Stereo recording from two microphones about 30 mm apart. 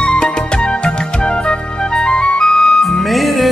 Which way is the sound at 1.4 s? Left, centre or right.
Left.